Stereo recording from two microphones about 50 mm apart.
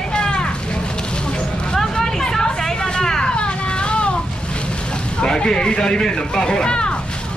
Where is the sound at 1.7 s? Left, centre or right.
Centre.